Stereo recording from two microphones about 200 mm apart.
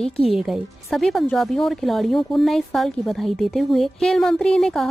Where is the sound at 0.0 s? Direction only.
Centre (ahead or behind).